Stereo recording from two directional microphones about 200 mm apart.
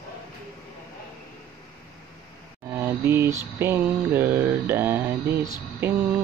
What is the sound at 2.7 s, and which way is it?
Mantra, 10° right (ahead or behind).